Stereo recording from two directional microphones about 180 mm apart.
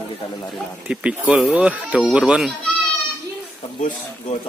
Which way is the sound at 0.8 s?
5° right (ahead or behind).